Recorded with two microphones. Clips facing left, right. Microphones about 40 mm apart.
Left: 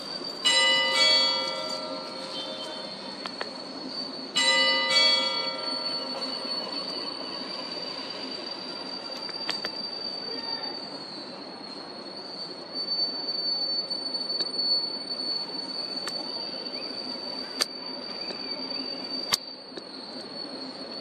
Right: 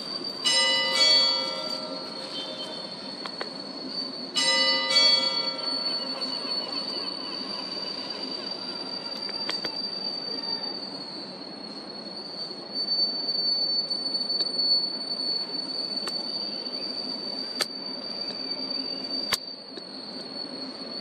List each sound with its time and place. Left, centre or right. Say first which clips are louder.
0.4 s church bell: left 2 dB; left
4.4 s church bell: left 2 dB; left